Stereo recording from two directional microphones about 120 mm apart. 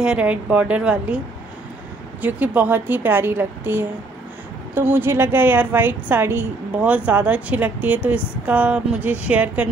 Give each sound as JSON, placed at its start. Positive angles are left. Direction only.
{"t": 0.0, "sound": "a woman's voice", "side_deg": -10}
{"t": 2.2, "sound": "a woman's voice", "side_deg": -15}